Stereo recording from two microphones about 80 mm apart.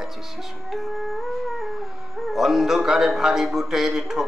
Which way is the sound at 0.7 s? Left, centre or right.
Centre.